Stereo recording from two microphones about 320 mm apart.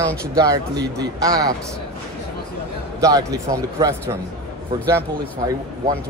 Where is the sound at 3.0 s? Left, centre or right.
Centre.